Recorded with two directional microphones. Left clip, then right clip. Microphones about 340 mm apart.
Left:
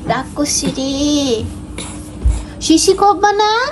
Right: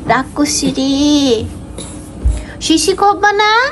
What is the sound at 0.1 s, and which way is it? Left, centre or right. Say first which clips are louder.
Speech: right 4 dB; centre.